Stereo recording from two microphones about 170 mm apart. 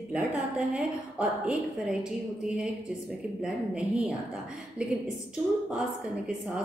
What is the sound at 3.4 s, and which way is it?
A woman's voice, 5° right (ahead or behind).